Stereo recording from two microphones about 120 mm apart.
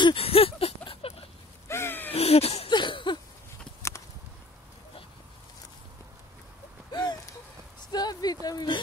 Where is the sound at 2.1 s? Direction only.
55° left (ahead or behind).